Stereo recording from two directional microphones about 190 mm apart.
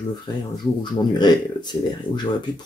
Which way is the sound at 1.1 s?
20° left (ahead or behind).